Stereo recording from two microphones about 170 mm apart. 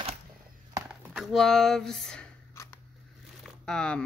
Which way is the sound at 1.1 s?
Centre (ahead or behind).